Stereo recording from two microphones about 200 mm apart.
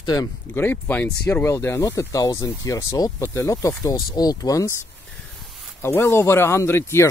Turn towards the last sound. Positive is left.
turn(degrees=10)  # may be behind; listen again after turning